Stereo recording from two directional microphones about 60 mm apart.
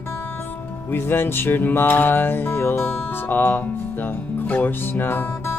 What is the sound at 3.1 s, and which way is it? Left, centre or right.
Speech, left.